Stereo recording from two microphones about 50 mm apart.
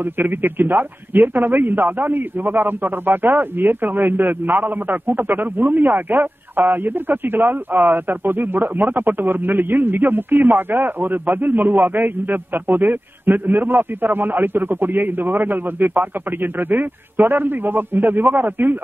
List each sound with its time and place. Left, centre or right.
0.0 s speech: right